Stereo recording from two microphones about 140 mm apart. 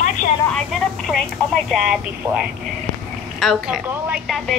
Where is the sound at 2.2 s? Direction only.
25° right (ahead or behind).